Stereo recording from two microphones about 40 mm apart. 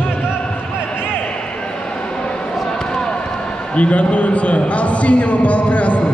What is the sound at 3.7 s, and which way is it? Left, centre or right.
A man's voice, left.